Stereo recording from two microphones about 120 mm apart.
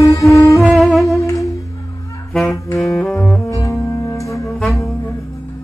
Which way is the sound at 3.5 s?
25° left (ahead or behind).